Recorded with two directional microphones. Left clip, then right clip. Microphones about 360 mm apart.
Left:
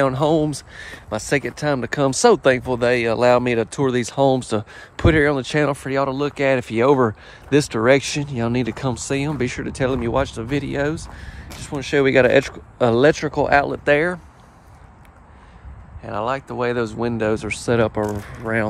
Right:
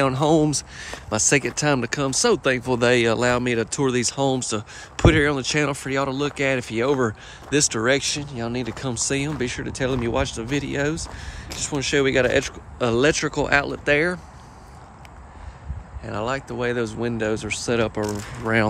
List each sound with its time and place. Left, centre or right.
0.0 s speech: centre
16.0 s speech: centre